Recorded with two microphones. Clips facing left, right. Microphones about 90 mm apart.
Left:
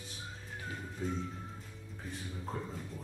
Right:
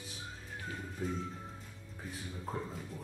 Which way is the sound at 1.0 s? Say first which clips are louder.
Even; centre (ahead or behind).